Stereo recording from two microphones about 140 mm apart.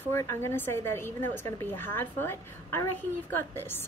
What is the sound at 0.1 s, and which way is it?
A woman's voice, 20° left (ahead or behind).